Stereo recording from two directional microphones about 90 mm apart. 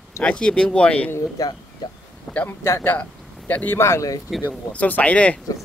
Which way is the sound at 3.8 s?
35° left (ahead or behind).